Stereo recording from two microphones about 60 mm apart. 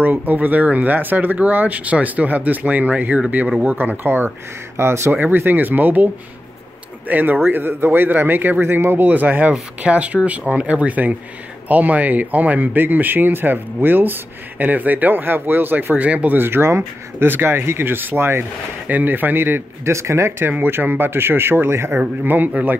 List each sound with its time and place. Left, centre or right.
0.0 s speech: right
4.7 s speech: right
5.1 s speech: right
7.1 s speech: right
16.3 s speech: right
18.9 s speech: right
19.8 s speech: right
20.4 s speech: right
22.2 s speech: right